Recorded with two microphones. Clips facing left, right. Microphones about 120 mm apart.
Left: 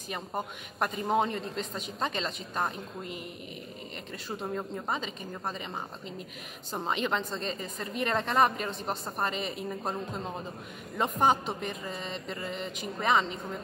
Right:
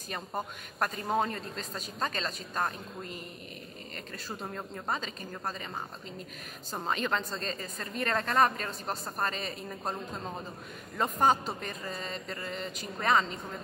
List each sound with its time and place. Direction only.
0.1 s a woman's voice: 10° left (ahead or behind)
4.6 s a woman's voice: 10° left (ahead or behind)
6.7 s a woman's voice: 15° left (ahead or behind)